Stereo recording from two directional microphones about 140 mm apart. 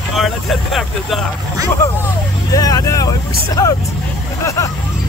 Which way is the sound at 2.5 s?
25° left (ahead or behind).